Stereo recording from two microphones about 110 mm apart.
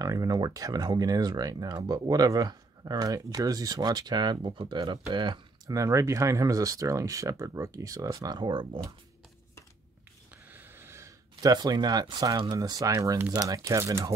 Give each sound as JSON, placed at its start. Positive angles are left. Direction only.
{"t": 0.0, "sound": "speech", "side_deg": -35}
{"t": 5.7, "sound": "speech", "side_deg": -30}
{"t": 10.3, "sound": "a sound", "side_deg": -15}
{"t": 11.5, "sound": "speech", "side_deg": -40}